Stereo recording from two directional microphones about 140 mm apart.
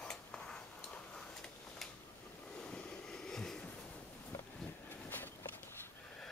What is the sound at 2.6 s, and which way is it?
Train, 5° left (ahead or behind).